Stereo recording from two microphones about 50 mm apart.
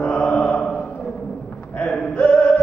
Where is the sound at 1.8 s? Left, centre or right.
Left.